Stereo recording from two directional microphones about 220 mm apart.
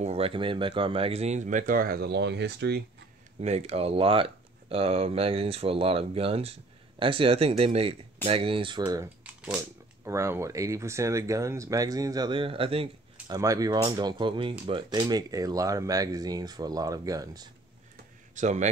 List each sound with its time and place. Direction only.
0.0 s speech: 25° right (ahead or behind); by 2.8 s 50° right (ahead or behind)
3.3 s speech: 30° right (ahead or behind)
18.3 s speech: 35° right (ahead or behind)